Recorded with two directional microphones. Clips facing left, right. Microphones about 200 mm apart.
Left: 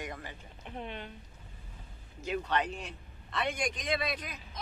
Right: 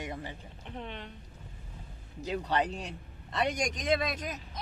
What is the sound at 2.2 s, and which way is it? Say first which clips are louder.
A man's voice: right 2 dB; 35° right (ahead or behind).